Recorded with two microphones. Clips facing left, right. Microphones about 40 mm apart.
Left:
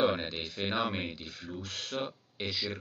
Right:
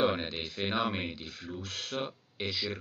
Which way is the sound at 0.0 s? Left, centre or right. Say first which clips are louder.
Even; centre.